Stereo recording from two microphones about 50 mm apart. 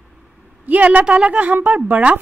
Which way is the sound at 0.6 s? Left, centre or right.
Right.